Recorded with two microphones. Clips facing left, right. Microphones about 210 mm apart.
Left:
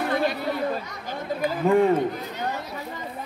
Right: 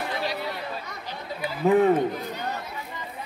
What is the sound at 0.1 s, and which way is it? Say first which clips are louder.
Chatter: left 8 dB; 50° left (ahead or behind).